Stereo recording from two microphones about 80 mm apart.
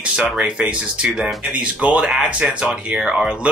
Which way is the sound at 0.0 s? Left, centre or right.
Centre.